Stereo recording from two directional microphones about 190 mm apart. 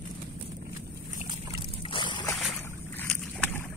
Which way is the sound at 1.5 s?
25° left (ahead or behind).